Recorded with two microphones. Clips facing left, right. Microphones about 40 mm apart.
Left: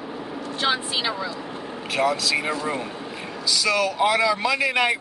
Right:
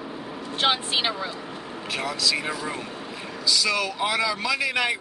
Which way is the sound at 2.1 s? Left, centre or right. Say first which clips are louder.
Left 2 dB; centre.